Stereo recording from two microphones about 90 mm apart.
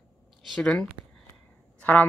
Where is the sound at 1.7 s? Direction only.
15° left (ahead or behind).